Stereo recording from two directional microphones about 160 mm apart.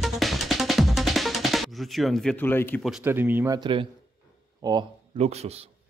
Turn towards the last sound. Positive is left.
turn(degrees=-40)  # may be behind; listen again after turning